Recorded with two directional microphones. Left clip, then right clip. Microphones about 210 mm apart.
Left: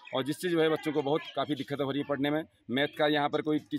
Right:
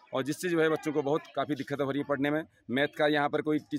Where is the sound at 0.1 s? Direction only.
5° right (ahead or behind).